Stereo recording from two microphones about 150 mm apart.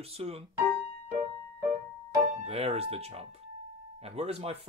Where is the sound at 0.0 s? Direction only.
40° right (ahead or behind).